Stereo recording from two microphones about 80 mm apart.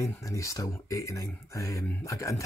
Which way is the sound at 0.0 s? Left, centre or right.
Left.